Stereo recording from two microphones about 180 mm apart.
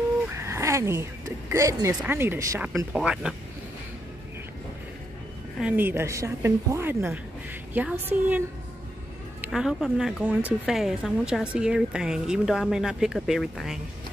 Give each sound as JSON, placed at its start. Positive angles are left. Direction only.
{"t": 0.3, "sound": "a sound", "side_deg": -15}
{"t": 1.5, "sound": "a woman's voice", "side_deg": -15}
{"t": 5.6, "sound": "a woman's voice", "side_deg": -10}